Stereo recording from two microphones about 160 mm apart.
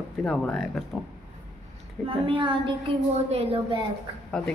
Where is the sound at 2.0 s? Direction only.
30° right (ahead or behind).